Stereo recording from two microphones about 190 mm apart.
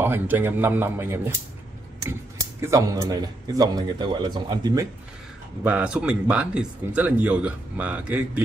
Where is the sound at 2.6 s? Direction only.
20° right (ahead or behind).